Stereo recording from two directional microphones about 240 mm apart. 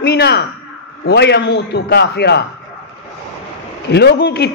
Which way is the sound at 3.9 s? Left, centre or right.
Left.